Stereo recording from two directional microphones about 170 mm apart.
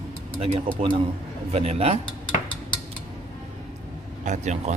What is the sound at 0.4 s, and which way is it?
Speech, 35° right (ahead or behind).